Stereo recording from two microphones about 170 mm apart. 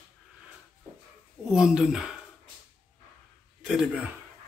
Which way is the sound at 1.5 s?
5° right (ahead or behind).